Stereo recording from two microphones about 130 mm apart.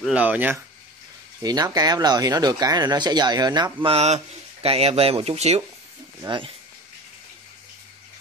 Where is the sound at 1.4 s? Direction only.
30° right (ahead or behind).